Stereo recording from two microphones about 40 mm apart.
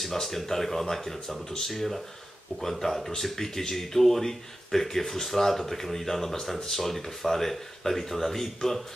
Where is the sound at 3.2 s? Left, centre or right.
Centre.